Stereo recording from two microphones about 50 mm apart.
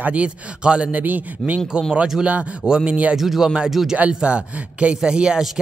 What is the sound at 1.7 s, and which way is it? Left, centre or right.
Speech, centre.